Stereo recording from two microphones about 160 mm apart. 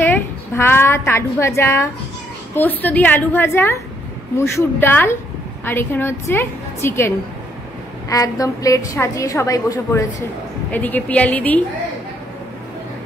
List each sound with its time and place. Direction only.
0.0 s a woman's voice: 15° left (ahead or behind)